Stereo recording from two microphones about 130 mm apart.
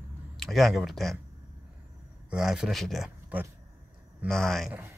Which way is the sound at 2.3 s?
5° right (ahead or behind).